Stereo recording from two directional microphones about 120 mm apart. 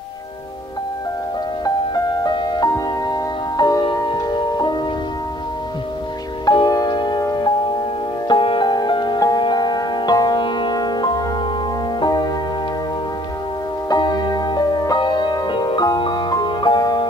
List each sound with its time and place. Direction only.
2.2 s music: 35° left (ahead or behind)
6.4 s music: 35° left (ahead or behind)
13.8 s music: 35° left (ahead or behind)